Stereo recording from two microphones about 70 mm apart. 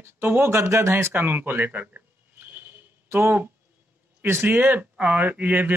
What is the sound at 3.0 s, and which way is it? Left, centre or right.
Speech, right.